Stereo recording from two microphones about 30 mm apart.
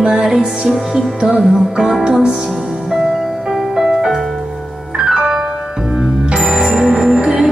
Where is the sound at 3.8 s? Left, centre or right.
Centre.